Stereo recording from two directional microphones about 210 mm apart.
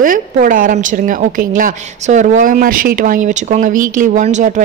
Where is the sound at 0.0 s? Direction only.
40° right (ahead or behind).